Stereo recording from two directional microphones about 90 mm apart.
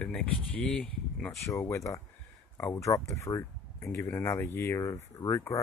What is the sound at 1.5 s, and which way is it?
Speech, 30° left (ahead or behind).